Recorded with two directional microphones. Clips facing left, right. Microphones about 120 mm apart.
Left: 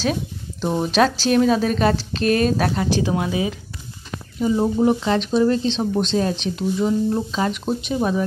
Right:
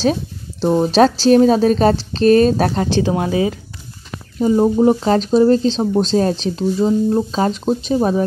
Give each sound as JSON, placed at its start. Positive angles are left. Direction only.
{"t": 0.0, "sound": "speech", "side_deg": -35}